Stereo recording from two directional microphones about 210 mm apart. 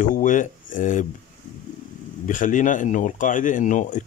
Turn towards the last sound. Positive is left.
turn(degrees=35)  # may be behind; listen again after turning